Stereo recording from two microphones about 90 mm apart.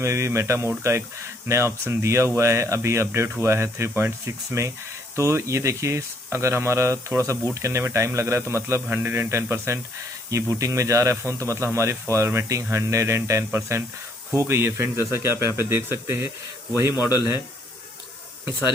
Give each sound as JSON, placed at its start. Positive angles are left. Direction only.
{"t": 0.0, "sound": "speech", "side_deg": -30}